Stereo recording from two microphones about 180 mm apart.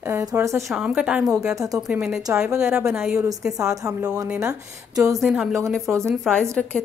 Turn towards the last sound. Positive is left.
turn(degrees=5)  # may be behind; listen again after turning